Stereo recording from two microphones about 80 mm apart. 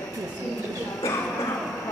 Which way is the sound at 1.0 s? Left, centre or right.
Left.